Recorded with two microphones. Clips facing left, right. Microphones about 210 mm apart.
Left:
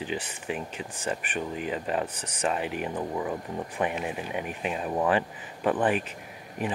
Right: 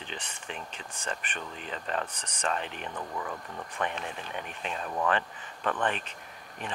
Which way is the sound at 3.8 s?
10° left (ahead or behind).